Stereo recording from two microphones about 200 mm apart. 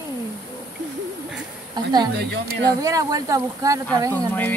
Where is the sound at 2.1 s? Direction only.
55° right (ahead or behind).